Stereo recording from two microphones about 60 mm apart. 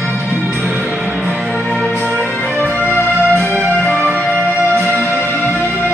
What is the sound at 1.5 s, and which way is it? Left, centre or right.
Music, left.